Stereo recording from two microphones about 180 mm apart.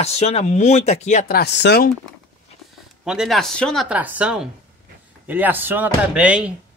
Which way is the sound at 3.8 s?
10° right (ahead or behind).